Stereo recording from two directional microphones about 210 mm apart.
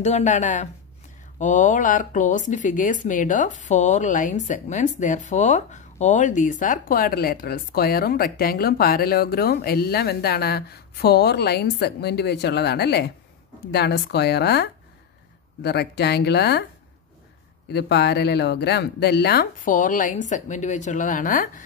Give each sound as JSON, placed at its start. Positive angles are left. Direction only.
{"t": 0.0, "sound": "speech", "side_deg": 35}
{"t": 17.6, "sound": "speech", "side_deg": 50}